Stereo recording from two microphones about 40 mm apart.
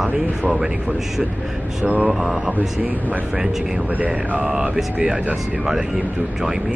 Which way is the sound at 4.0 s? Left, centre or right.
Right.